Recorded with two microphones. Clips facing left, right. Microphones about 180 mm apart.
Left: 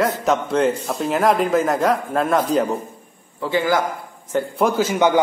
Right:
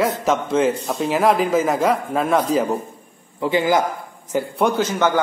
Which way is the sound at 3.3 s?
15° right (ahead or behind).